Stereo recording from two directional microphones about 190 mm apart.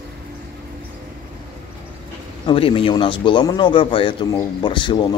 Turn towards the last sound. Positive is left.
turn(degrees=25)  # may be behind; listen again after turning